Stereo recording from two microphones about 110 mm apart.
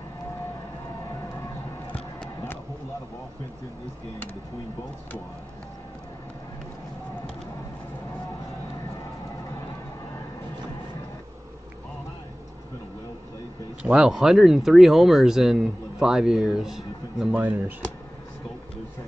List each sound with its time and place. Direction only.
1.9 s a sound: 10° left (ahead or behind)
13.9 s speech: 5° right (ahead or behind)
17.3 s speech: 15° right (ahead or behind)